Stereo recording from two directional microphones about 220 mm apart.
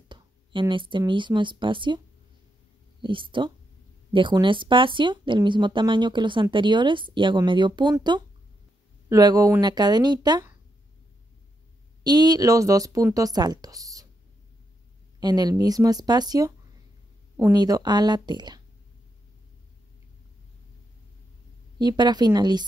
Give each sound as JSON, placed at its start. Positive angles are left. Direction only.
{"t": 0.1, "sound": "speech", "side_deg": -20}
{"t": 3.0, "sound": "speech", "side_deg": -20}
{"t": 12.0, "sound": "speech", "side_deg": -20}
{"t": 15.1, "sound": "speech", "side_deg": -20}
{"t": 21.7, "sound": "speech", "side_deg": -20}